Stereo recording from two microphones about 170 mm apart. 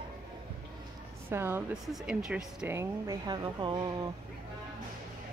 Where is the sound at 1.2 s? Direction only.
15° right (ahead or behind).